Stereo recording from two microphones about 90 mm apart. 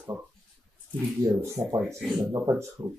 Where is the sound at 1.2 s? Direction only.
35° right (ahead or behind).